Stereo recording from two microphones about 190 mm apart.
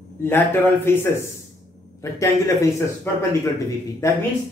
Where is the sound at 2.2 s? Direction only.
15° left (ahead or behind).